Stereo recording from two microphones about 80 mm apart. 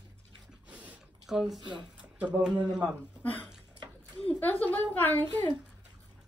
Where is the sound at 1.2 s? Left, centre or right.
Centre.